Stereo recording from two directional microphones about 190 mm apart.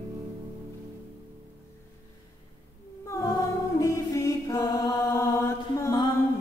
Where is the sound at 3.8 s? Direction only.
15° left (ahead or behind).